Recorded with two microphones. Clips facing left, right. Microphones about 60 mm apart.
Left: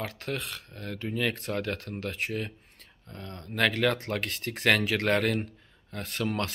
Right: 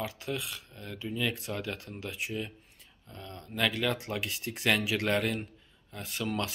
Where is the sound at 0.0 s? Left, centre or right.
Left.